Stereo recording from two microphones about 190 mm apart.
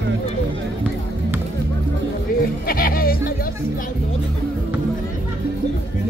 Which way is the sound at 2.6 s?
50° left (ahead or behind).